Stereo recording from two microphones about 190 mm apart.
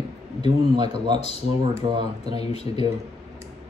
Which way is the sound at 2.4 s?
35° left (ahead or behind).